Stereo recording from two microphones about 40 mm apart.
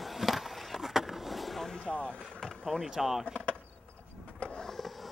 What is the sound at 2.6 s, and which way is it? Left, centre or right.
Speech, centre.